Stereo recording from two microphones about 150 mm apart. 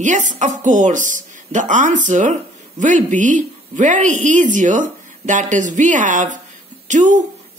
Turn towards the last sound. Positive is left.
turn(degrees=-55)  # may be behind; listen again after turning